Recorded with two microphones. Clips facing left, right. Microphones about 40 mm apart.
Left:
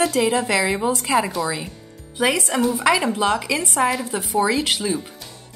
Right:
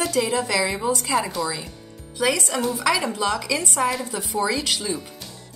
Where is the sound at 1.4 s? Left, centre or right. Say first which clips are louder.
Left 2 dB; centre.